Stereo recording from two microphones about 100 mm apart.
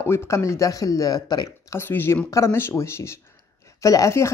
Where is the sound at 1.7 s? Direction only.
20° left (ahead or behind).